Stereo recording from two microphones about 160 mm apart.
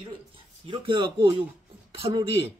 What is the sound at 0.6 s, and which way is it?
Speech, 35° right (ahead or behind).